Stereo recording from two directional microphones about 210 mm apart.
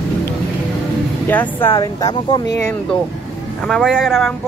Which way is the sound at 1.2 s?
10° left (ahead or behind).